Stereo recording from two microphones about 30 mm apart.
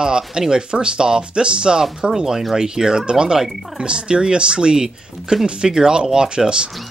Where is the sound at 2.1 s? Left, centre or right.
Centre; by 6.6 s right.